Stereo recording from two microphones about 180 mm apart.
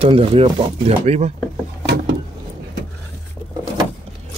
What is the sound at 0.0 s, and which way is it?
Speech, 30° right (ahead or behind).